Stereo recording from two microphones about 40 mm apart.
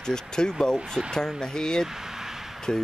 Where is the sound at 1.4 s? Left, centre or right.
Centre.